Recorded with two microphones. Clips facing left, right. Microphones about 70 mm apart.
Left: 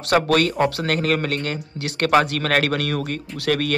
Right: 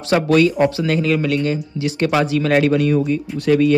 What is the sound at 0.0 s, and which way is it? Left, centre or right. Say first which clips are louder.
Speech: right 4 dB; left.